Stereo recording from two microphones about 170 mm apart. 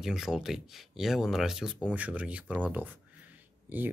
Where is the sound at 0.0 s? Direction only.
5° right (ahead or behind).